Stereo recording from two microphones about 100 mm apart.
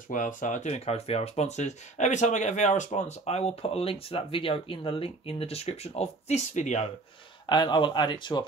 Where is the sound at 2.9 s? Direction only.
90° left.